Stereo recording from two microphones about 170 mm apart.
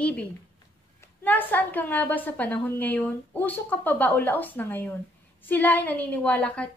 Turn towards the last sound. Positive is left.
turn(degrees=5)  # may be behind; listen again after turning